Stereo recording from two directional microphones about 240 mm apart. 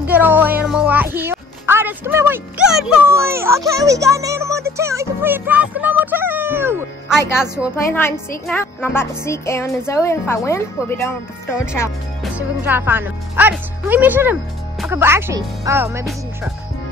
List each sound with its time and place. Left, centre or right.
0.1 s speech: centre
7.7 s a child's voice: centre
12.2 s speech: centre